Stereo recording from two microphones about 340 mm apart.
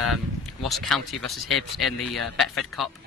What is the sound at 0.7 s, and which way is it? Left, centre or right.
A man's voice, centre.